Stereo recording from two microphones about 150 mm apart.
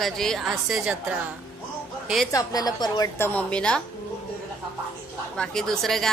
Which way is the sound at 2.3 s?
25° left (ahead or behind).